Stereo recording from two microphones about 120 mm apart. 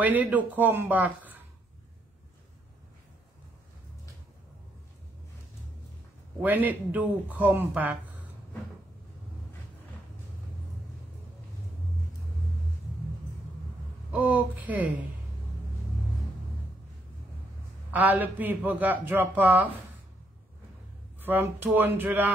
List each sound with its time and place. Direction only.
0.0 s a man's voice: 15° right (ahead or behind)
6.4 s a man's voice: 15° right (ahead or behind)
14.1 s a man's voice: 15° right (ahead or behind)
17.9 s a man's voice: 15° right (ahead or behind)
21.2 s a man's voice: 15° right (ahead or behind)